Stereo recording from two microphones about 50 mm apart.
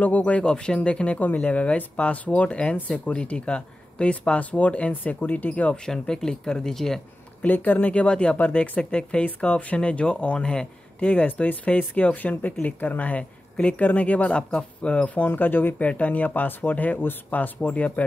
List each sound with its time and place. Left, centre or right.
0.0 s speech: left
5.9 s speech: centre
7.4 s speech: left
7.9 s speech: left
11.0 s speech: left
15.8 s speech: left